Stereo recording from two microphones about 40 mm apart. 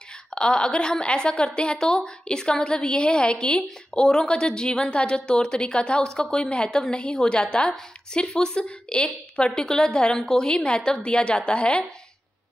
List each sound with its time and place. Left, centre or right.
0.3 s a woman's voice: left